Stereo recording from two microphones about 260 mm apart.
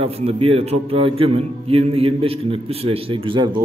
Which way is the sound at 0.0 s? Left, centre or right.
Right.